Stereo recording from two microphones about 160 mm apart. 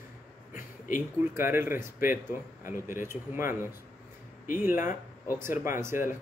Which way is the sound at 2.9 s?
15° right (ahead or behind).